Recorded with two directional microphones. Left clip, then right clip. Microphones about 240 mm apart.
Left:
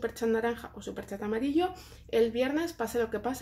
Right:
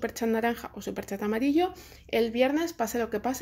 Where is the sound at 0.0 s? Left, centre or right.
Right.